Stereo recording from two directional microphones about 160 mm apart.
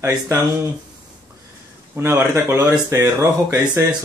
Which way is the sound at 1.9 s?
15° right (ahead or behind).